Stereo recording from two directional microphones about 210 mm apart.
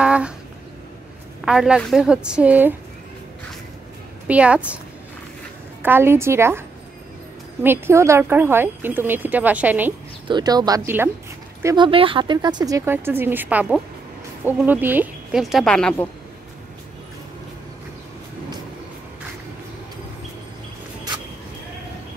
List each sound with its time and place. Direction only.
0.0 s a sound: 5° right (ahead or behind)
1.4 s speech: centre (ahead or behind)
4.3 s speech: 5° right (ahead or behind)
5.8 s speech: 10° right (ahead or behind)
7.6 s speech: 10° right (ahead or behind)
10.2 s speech: 20° right (ahead or behind); by 16.1 s 5° left (ahead or behind)